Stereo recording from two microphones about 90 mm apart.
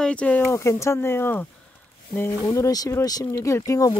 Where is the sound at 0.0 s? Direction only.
15° left (ahead or behind).